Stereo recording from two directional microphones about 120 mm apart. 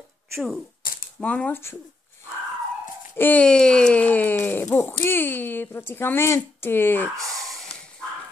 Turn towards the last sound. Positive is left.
turn(degrees=55)  # may be behind; listen again after turning